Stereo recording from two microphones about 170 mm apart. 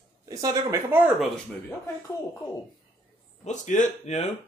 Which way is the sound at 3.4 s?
45° left (ahead or behind).